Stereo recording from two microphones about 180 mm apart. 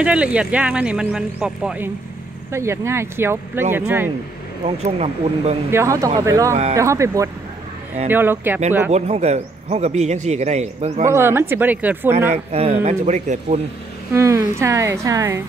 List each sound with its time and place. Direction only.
0.0 s speech: 5° right (ahead or behind)
4.6 s a man's voice: 35° right (ahead or behind)
5.7 s speech: 15° right (ahead or behind)
8.9 s a man's voice: 35° right (ahead or behind)
11.1 s speech: 15° right (ahead or behind)
12.3 s a man's voice: 35° right (ahead or behind)
14.1 s speech: 15° right (ahead or behind)